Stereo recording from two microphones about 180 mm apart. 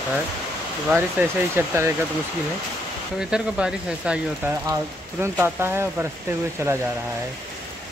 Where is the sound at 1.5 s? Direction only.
15° right (ahead or behind).